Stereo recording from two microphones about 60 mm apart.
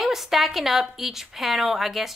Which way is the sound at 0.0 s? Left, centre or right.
Centre.